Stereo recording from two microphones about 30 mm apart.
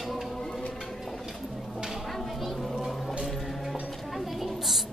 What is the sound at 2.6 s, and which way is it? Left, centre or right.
Music, centre.